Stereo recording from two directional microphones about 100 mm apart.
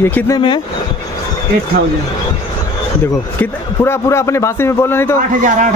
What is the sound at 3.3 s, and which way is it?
A man's voice, 25° left (ahead or behind).